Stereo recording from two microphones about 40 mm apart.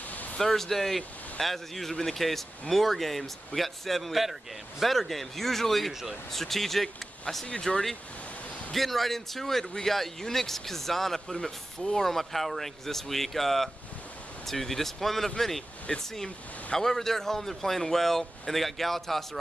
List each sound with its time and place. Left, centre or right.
0.1 s a sound: left
0.4 s speech: centre
15.9 s speech: left
16.7 s speech: centre